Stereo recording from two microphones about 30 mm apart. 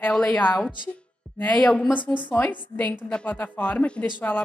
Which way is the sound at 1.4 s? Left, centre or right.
Left.